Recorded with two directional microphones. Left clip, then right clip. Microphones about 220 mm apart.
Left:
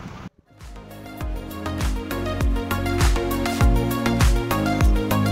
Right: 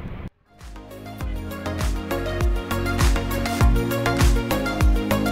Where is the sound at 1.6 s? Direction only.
Centre (ahead or behind).